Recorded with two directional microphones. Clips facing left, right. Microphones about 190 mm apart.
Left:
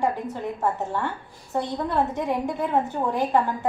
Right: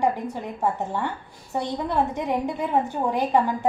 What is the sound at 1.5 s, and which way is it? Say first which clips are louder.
A woman's voice: even; 15° right (ahead or behind).